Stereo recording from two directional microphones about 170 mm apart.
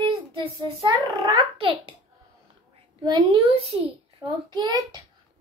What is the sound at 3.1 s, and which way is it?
Child singing, 25° right (ahead or behind).